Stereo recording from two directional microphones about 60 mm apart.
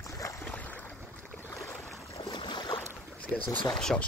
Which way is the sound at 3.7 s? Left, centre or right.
Centre.